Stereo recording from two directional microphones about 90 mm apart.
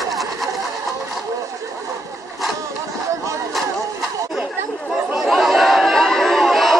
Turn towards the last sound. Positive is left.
turn(degrees=0)  # may be behind; listen again after turning